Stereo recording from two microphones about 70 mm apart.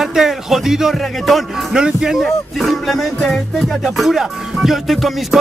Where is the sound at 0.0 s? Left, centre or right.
Centre.